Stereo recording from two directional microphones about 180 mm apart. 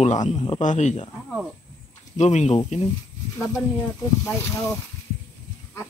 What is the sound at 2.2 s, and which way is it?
Speech, 40° left (ahead or behind).